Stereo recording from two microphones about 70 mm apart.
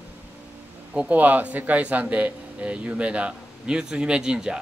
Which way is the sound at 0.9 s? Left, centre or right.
Centre.